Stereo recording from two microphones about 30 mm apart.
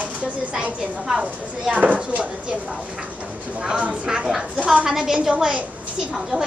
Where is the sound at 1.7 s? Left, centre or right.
Right.